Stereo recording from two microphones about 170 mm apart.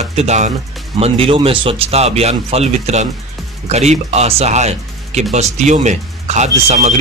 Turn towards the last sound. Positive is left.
turn(degrees=-40)  # may be behind; listen again after turning